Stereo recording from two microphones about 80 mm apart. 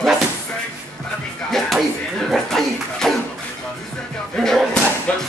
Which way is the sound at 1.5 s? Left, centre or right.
Centre.